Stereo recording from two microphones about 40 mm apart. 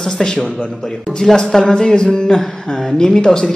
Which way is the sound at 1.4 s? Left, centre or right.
Centre.